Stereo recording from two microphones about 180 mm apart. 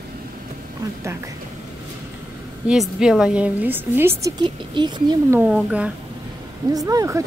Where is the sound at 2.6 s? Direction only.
5° right (ahead or behind).